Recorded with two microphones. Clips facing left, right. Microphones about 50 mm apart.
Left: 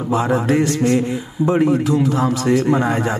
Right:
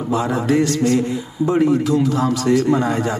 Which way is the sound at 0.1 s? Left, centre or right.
Left.